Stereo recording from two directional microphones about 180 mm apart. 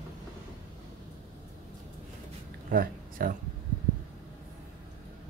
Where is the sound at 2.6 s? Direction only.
50° right (ahead or behind).